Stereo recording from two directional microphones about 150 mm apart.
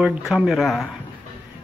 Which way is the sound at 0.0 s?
5° right (ahead or behind).